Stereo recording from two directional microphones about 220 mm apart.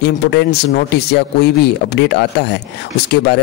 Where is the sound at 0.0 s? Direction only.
50° left (ahead or behind).